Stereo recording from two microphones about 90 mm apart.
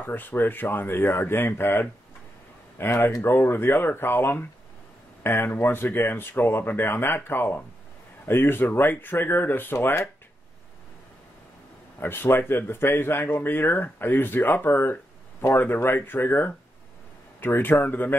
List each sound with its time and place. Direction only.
0.0 s speech: 20° left (ahead or behind)
12.0 s speech: 25° left (ahead or behind)